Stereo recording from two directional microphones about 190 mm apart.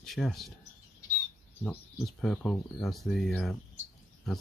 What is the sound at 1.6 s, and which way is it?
Speech, 5° left (ahead or behind).